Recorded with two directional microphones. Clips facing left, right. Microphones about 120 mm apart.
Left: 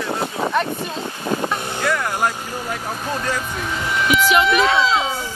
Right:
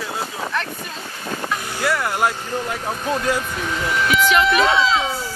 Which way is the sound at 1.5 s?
25° left (ahead or behind).